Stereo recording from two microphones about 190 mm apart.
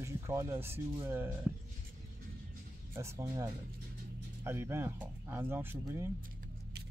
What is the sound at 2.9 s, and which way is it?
Speech, 15° right (ahead or behind).